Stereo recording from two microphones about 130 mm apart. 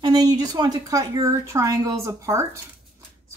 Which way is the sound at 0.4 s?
30° right (ahead or behind).